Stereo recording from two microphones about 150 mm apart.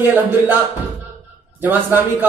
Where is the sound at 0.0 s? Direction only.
15° right (ahead or behind).